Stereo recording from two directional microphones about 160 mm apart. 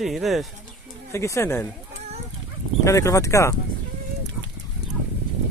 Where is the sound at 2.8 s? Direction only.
20° left (ahead or behind).